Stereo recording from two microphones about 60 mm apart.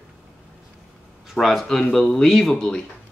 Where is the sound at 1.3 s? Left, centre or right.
Centre.